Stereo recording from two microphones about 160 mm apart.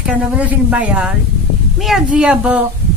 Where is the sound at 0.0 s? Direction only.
10° right (ahead or behind).